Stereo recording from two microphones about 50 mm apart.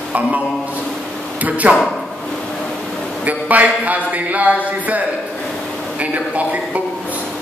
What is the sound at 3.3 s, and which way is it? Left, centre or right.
A man's voice, right.